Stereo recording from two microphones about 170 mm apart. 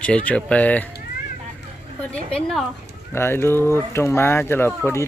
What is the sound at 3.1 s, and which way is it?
Speech, 15° left (ahead or behind).